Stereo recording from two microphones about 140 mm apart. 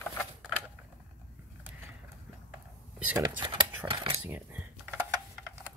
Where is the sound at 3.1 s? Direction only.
35° right (ahead or behind).